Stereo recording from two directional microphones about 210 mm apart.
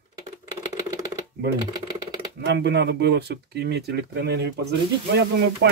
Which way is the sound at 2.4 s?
55° right (ahead or behind).